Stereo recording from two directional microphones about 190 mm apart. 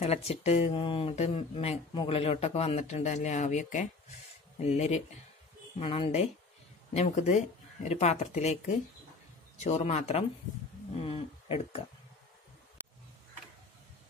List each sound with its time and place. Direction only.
0.0 s speech: 35° left (ahead or behind)